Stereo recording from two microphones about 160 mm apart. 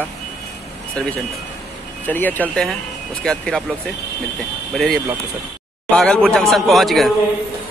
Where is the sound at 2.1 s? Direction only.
10° left (ahead or behind).